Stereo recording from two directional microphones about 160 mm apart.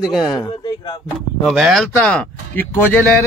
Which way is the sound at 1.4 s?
Centre (ahead or behind).